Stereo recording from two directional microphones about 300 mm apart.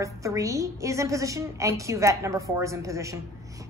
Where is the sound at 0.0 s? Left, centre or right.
Centre.